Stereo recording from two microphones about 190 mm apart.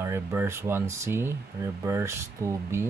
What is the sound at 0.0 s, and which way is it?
Speech, 15° right (ahead or behind).